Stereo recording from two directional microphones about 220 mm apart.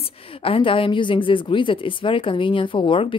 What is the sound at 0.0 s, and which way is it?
A woman's voice, 25° left (ahead or behind).